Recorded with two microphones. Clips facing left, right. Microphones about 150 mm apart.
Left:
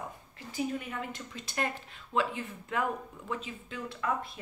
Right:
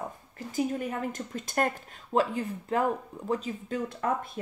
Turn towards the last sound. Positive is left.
turn(degrees=-45)  # may be behind; listen again after turning